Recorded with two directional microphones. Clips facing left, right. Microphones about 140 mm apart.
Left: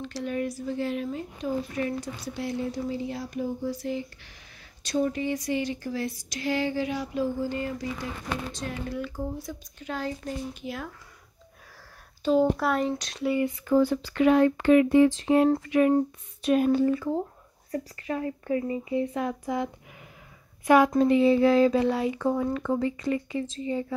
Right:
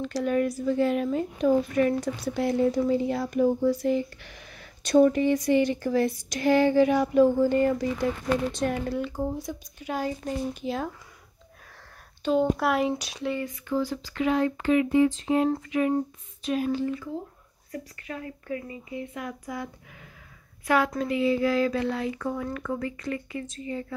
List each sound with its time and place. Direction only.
0.0 s speech: 50° right (ahead or behind)
8.9 s speech: 25° right (ahead or behind)
10.6 s speech: 25° right (ahead or behind)
12.3 s speech: centre (ahead or behind)
13.7 s speech: 55° left (ahead or behind)
17.6 s speech: 30° left (ahead or behind)